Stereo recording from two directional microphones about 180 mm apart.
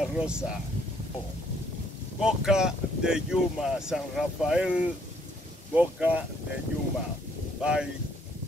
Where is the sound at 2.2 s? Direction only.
5° right (ahead or behind).